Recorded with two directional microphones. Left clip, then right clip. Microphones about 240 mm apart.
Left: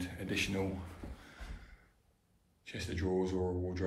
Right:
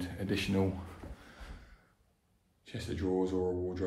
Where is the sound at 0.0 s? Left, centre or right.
Right.